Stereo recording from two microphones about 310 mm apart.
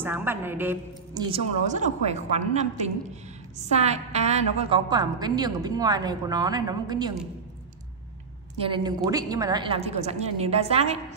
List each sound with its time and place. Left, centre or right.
0.0 s a woman's voice: centre
1.7 s a woman's voice: right
8.6 s a woman's voice: centre